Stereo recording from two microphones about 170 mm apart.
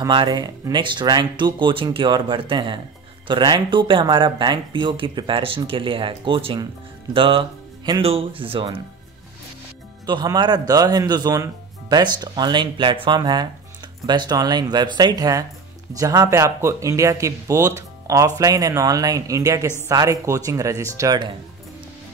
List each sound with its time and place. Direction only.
0.0 s speech: 25° right (ahead or behind)
10.0 s speech: 25° right (ahead or behind)